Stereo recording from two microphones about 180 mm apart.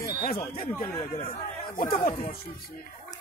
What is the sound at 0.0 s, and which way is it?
Chatter, 55° left (ahead or behind).